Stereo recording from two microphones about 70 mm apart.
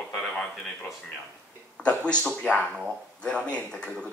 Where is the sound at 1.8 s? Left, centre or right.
Centre.